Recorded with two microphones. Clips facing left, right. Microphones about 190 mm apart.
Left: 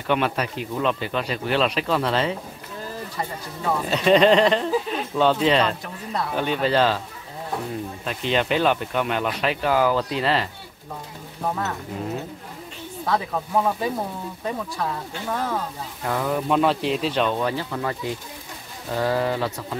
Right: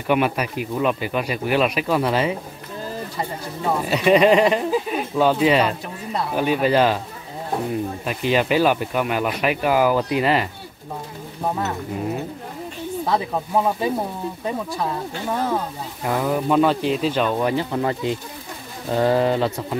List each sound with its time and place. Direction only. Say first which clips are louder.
0.0 s speech: right 3 dB; 10° right (ahead or behind)
8.0 s speech: right 2 dB; 10° right (ahead or behind)
13.0 s speech: right 1 dB; 20° right (ahead or behind); by 17.4 s 5° right (ahead or behind)
17.4 s speech: right 4 dB; 15° right (ahead or behind)